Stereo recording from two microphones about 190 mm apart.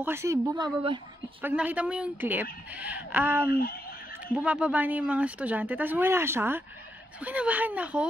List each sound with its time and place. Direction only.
0.0 s speech: 15° right (ahead or behind)
1.4 s speech: 10° right (ahead or behind)